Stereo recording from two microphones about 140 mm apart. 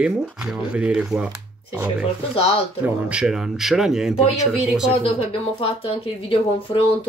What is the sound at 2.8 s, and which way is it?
Speech, 5° right (ahead or behind).